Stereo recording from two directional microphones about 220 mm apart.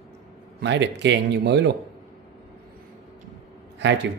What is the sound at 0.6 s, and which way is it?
Speech, 50° right (ahead or behind).